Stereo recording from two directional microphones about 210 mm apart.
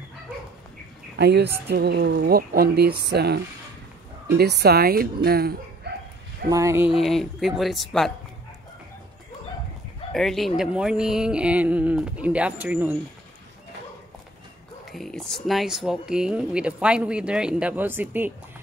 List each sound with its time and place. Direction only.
1.1 s speech: 50° right (ahead or behind)
4.4 s speech: 50° right (ahead or behind)
6.5 s speech: 15° right (ahead or behind)
6.9 s speech: centre (ahead or behind)
10.1 s speech: centre (ahead or behind)
14.9 s speech: centre (ahead or behind)